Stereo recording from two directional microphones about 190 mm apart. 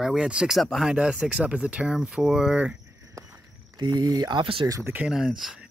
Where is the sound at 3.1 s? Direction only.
20° right (ahead or behind).